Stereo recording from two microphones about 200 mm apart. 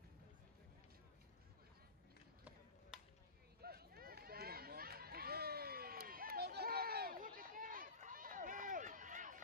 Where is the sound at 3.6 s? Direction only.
50° right (ahead or behind).